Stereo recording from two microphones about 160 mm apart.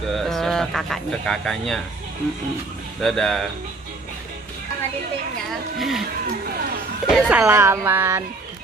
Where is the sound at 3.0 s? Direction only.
5° left (ahead or behind).